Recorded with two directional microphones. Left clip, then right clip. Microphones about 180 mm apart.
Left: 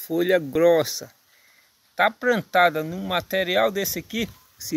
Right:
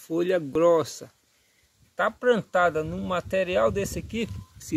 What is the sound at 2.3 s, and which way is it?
Speech, 5° right (ahead or behind).